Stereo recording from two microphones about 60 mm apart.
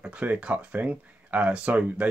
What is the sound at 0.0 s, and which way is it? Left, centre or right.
Speech, right.